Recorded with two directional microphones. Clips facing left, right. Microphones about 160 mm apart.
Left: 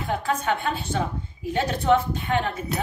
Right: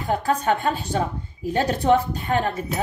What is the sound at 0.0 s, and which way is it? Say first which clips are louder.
Speech: right 3 dB; 40° right (ahead or behind).